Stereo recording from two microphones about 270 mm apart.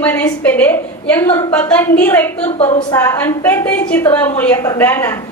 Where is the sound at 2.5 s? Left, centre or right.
Left.